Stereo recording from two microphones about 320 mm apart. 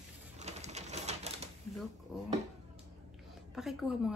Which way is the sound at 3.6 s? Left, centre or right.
Centre.